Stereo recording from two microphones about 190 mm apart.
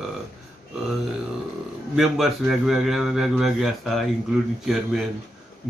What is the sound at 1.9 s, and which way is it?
A man's voice, centre (ahead or behind).